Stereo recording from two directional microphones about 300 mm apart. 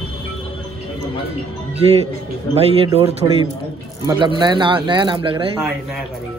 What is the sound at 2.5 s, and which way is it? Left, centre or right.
Speech, centre.